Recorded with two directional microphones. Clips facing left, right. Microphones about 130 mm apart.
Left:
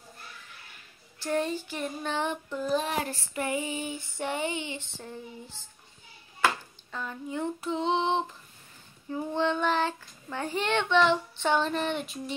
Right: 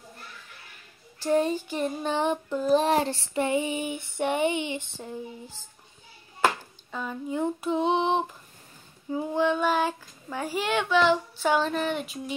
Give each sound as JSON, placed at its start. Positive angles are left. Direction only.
{"t": 1.2, "sound": "female singing", "side_deg": -15}
{"t": 6.9, "sound": "speech", "side_deg": -10}
{"t": 7.2, "sound": "female singing", "side_deg": -15}
{"t": 9.1, "sound": "a child's voice", "side_deg": -10}